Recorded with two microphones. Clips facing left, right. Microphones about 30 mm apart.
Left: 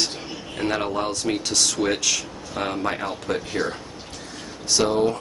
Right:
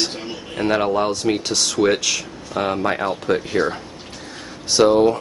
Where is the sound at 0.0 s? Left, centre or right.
Centre.